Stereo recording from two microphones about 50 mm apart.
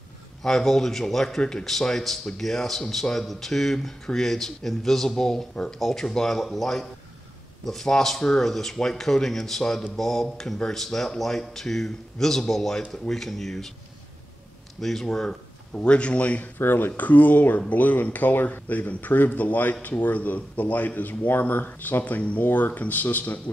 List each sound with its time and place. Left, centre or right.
0.4 s speech: centre
14.8 s speech: centre
15.0 s speech: centre
16.5 s speech: left